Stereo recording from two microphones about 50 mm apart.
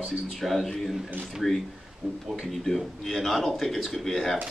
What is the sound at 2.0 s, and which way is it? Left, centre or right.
Speech, centre.